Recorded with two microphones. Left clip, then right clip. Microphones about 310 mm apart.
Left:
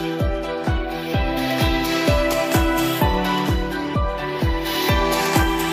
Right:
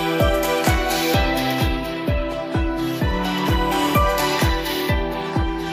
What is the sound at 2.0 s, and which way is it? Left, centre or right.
Music, left.